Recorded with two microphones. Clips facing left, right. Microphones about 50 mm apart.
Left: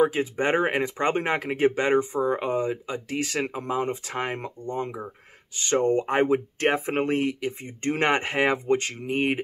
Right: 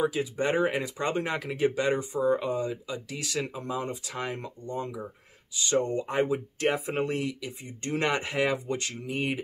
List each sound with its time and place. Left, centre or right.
0.0 s speech: left